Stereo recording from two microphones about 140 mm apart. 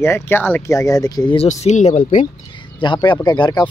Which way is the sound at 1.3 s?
55° left (ahead or behind).